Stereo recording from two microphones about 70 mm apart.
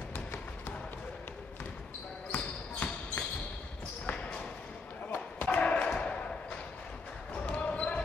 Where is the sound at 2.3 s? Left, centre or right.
Centre.